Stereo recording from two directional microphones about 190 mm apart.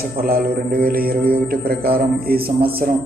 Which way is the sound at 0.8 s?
50° right (ahead or behind).